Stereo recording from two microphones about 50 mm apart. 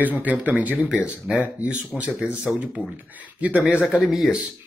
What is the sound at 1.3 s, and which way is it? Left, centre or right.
Speech, centre.